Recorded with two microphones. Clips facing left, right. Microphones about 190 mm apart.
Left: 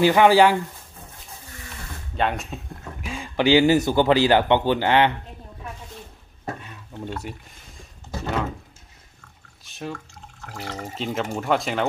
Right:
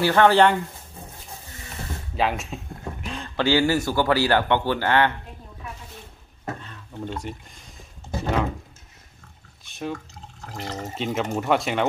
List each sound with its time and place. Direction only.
0.0 s speech: 10° left (ahead or behind)
2.1 s speech: centre (ahead or behind); by 5.1 s 15° left (ahead or behind)
6.4 s stir: 10° left (ahead or behind)
9.7 s drip: centre (ahead or behind)
10.4 s speech: 15° right (ahead or behind)
11.0 s speech: centre (ahead or behind)